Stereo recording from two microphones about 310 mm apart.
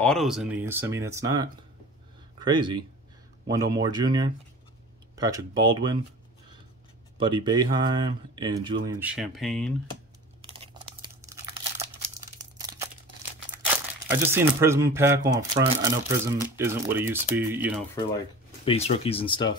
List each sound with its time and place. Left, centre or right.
0.0 s speech: centre
7.2 s speech: centre
8.8 s speech: centre
10.4 s tearing: centre
13.7 s speech: centre
18.7 s speech: centre